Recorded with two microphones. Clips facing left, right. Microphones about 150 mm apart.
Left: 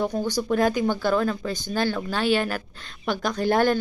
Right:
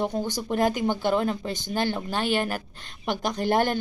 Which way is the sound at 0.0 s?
20° right (ahead or behind).